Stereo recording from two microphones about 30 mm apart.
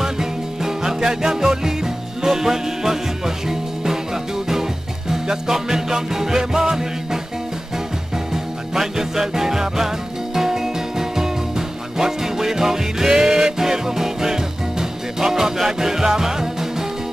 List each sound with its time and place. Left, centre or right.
0.0 s music: centre
5.1 s music: centre
8.3 s music: centre